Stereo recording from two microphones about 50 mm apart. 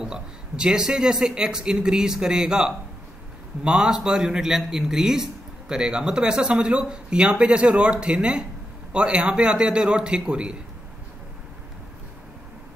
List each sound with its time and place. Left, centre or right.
0.0 s a man's voice: centre